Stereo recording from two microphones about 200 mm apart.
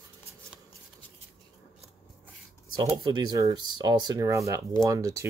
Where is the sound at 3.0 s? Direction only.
20° right (ahead or behind).